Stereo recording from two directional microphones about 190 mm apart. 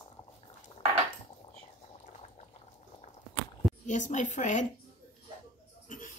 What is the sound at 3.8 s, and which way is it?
Speech, 40° left (ahead or behind).